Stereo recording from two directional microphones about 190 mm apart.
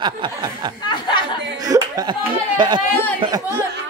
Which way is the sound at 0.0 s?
25° right (ahead or behind).